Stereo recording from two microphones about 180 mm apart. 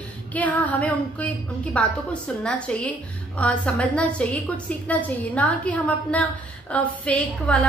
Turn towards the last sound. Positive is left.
turn(degrees=5)  # may be behind; listen again after turning